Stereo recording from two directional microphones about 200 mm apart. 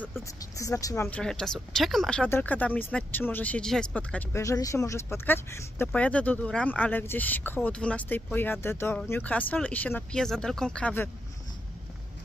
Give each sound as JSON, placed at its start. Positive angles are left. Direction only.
{"t": 0.4, "sound": "speech", "side_deg": 15}